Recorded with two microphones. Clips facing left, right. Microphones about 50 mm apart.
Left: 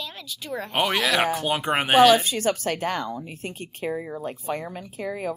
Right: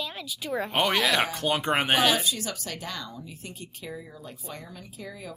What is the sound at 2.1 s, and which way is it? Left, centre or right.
A woman's voice, left.